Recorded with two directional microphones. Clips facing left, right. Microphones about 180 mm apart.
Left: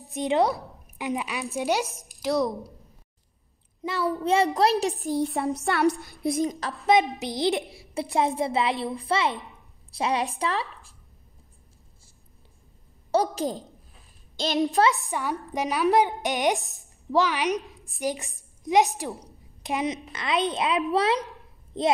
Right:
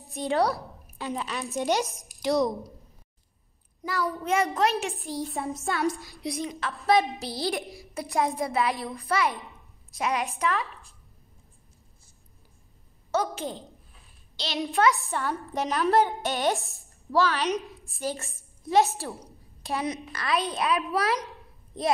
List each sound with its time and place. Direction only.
0.1 s a woman's voice: 20° left (ahead or behind)
3.8 s a child's voice: 25° left (ahead or behind)
5.1 s a woman's voice: 65° left (ahead or behind); by 6.7 s 40° left (ahead or behind)
6.9 s a woman's voice: 20° left (ahead or behind)
13.1 s a child's voice: 35° left (ahead or behind)
14.3 s a sound: 45° left (ahead or behind)
14.9 s a woman's voice: 15° left (ahead or behind)